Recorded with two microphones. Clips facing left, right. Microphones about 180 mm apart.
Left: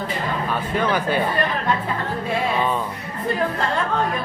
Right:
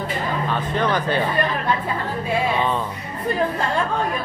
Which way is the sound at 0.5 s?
10° left (ahead or behind).